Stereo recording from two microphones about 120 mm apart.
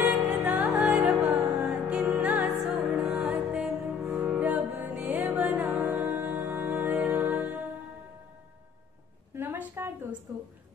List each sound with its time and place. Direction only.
0.0 s music: 15° right (ahead or behind)
1.3 s music: 25° right (ahead or behind)
1.7 s music: 10° right (ahead or behind)
9.3 s a sound: 15° right (ahead or behind)